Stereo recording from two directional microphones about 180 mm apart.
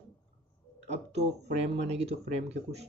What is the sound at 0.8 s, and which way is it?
Speech, 40° right (ahead or behind).